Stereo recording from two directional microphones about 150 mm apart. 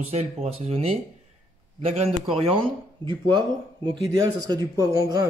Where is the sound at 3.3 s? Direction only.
30° right (ahead or behind).